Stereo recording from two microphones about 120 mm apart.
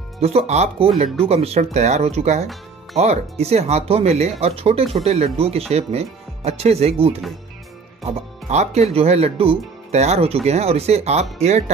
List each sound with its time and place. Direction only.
0.2 s speech: 60° right (ahead or behind)